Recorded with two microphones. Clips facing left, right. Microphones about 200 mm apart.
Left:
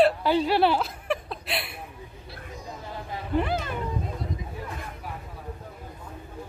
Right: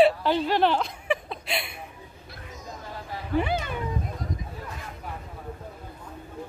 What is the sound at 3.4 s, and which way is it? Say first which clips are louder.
Speech: even; centre (ahead or behind).